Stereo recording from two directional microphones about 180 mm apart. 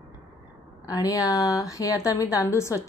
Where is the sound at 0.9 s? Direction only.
20° left (ahead or behind).